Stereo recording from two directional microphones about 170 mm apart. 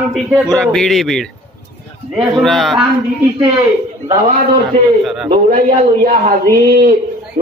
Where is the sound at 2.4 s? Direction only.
Centre (ahead or behind).